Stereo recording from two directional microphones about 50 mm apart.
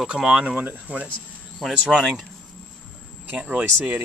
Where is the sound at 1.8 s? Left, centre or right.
Centre.